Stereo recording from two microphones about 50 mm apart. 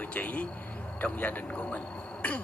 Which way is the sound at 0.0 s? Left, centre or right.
Left.